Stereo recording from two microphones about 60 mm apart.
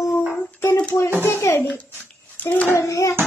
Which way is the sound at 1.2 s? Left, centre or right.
Left.